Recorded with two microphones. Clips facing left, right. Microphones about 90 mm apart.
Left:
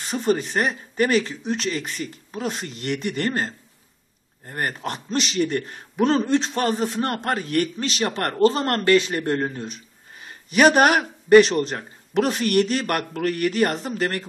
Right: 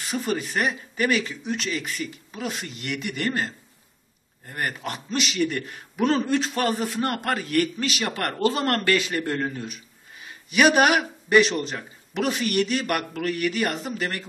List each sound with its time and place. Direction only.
0.0 s a man's voice: 35° left (ahead or behind)